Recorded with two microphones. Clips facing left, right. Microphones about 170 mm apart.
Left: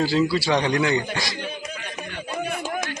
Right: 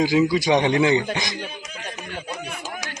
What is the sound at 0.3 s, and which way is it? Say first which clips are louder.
A man's voice: right 3 dB; 20° right (ahead or behind).